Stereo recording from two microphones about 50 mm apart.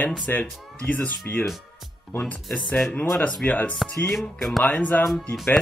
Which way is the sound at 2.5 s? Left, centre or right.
Left.